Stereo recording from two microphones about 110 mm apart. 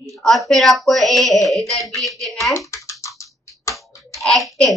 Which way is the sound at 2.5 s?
25° left (ahead or behind).